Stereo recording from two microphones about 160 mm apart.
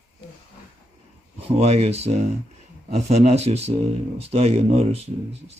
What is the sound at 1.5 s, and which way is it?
Speech, 40° right (ahead or behind).